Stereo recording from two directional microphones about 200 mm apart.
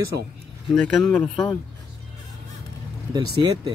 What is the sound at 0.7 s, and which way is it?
Speech, 5° left (ahead or behind).